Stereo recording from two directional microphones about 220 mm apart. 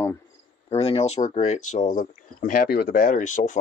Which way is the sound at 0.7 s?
25° left (ahead or behind).